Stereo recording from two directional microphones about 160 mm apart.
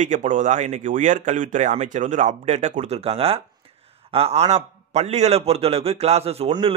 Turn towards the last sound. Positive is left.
turn(degrees=-35)  # may be behind; listen again after turning